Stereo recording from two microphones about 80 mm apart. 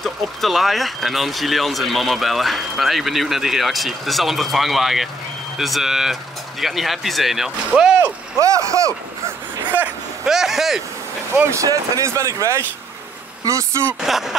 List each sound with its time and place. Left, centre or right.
0.0 s speech: centre
8.4 s speech: right
10.2 s speech: centre
11.5 s speech: right
14.0 s speech: centre